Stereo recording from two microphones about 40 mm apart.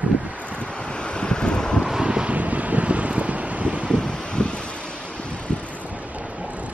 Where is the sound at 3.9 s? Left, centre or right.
Left.